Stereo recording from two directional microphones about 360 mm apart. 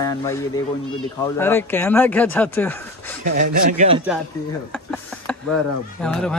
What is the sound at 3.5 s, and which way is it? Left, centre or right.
Speech, centre.